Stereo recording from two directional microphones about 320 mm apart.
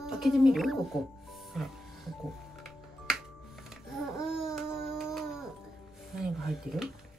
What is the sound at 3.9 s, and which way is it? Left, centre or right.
Babbling, centre.